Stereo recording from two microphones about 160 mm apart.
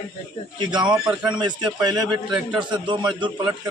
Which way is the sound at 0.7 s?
30° right (ahead or behind).